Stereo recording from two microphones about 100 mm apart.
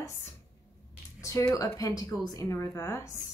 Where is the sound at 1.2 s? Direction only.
30° left (ahead or behind).